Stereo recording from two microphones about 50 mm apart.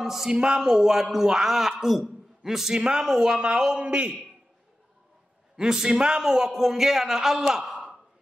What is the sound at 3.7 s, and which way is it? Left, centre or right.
Mantra, right.